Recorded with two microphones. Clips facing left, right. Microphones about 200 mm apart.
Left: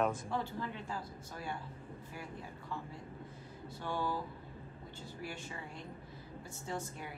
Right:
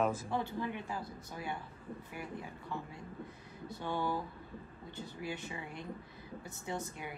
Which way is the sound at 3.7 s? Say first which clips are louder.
Right 2 dB; 20° right (ahead or behind).